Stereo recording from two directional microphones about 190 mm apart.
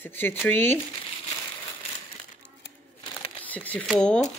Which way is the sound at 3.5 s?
5° left (ahead or behind).